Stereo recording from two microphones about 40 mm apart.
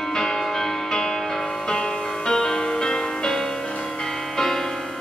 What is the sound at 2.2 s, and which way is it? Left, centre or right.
Music, centre.